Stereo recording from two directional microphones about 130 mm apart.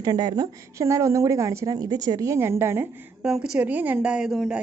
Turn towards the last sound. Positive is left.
turn(degrees=0)  # may be behind; listen again after turning